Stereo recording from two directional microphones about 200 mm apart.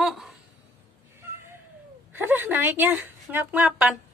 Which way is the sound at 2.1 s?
10° right (ahead or behind).